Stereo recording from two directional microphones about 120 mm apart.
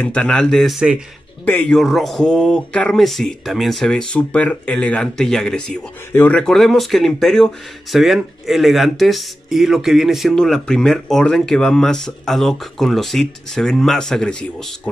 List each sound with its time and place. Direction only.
0.0 s speech: 10° left (ahead or behind)
1.4 s speech: 15° left (ahead or behind)
1.8 s speech: centre (ahead or behind)